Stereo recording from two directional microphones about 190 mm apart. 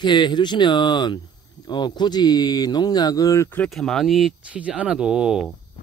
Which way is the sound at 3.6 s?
Centre (ahead or behind).